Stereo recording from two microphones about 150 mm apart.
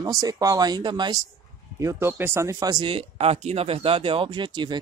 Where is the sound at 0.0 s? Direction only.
25° right (ahead or behind).